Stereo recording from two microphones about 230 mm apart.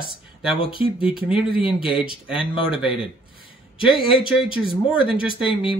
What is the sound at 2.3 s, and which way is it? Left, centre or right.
Speech, left.